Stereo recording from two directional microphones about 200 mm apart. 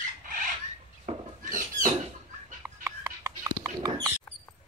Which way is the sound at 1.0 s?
40° right (ahead or behind).